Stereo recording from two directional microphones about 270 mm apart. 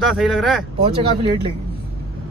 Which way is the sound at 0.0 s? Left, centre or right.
Centre.